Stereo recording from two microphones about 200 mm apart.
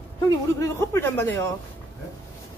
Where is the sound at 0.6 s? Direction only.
10° left (ahead or behind).